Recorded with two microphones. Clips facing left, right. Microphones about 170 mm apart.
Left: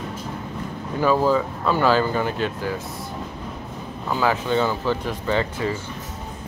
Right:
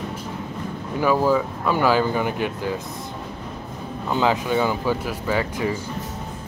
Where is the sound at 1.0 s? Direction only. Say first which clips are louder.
Even; 10° right (ahead or behind).